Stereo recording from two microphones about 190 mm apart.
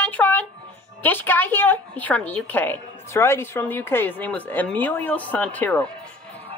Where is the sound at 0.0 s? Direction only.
10° left (ahead or behind).